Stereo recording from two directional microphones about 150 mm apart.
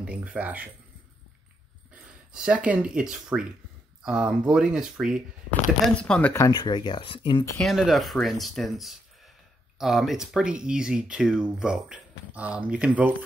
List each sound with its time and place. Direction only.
0.0 s speech: 10° right (ahead or behind)
2.3 s speech: 5° right (ahead or behind)
6.3 s speech: 25° left (ahead or behind)
7.5 s speech: centre (ahead or behind)